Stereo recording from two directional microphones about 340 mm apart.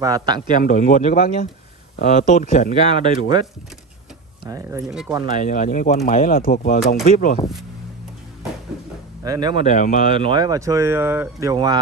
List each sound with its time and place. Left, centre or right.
0.0 s speech: centre
0.6 s speech: left
2.8 s speech: centre
4.5 s speech: centre
5.4 s speech: left
9.2 s speech: centre
9.7 s speech: left
10.1 s speech: centre